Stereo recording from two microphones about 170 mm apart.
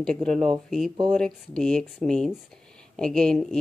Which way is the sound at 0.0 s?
5° left (ahead or behind).